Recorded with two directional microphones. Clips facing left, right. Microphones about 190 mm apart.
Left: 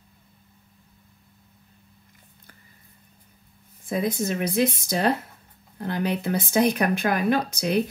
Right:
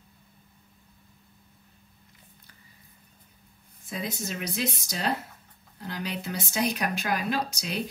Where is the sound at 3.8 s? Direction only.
55° left (ahead or behind).